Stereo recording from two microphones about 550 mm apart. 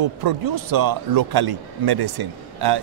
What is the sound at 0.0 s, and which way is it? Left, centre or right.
A man's voice, right.